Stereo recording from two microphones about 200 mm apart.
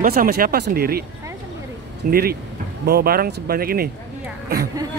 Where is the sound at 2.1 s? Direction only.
50° right (ahead or behind).